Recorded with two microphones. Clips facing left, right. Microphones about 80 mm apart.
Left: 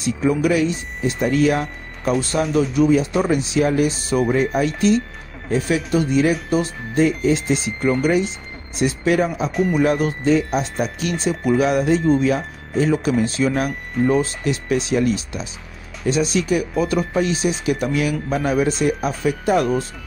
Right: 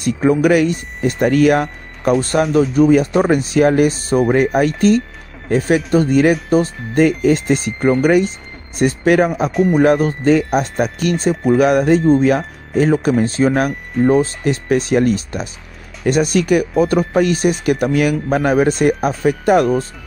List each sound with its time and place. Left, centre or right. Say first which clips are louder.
0.0 s speech: right 5 dB; right
2.4 s speech: right 4 dB; centre
2.9 s speech: right 5 dB; right
7.1 s speech: right 4 dB; right
9.5 s speech: right 5 dB; centre
9.8 s speech: right 6 dB; right